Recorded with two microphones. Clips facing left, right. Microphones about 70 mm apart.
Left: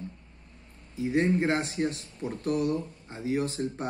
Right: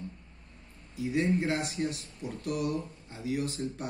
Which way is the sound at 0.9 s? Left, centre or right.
Left.